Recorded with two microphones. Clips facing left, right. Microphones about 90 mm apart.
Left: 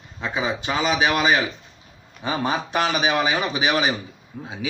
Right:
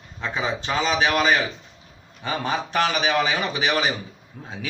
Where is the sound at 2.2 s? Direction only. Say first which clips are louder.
Left 2 dB; 15° left (ahead or behind).